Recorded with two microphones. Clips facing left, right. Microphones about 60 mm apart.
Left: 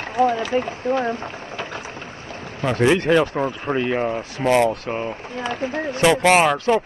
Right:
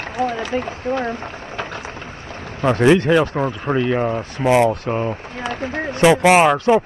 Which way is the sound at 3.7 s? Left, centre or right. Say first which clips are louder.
Right 3 dB; centre.